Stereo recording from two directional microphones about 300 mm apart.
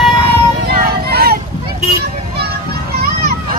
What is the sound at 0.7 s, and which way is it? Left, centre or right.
Music, right.